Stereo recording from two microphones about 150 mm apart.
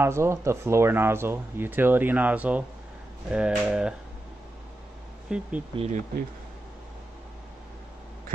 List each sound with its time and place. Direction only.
0.0 s speech: 15° right (ahead or behind)
5.3 s speech: 5° right (ahead or behind)
5.8 s speech: 50° right (ahead or behind)